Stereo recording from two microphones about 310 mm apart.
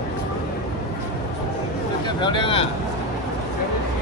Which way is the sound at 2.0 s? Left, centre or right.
Centre.